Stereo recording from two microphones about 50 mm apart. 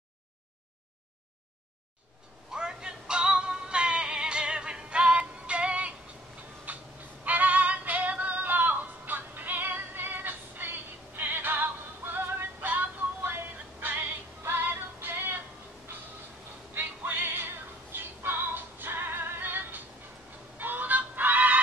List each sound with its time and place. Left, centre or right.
2.5 s synthetic singing: centre
6.7 s fowl: right
7.2 s synthetic singing: right
12.7 s music: right
14.4 s synthetic singing: right
16.7 s music: right
20.5 s fowl: right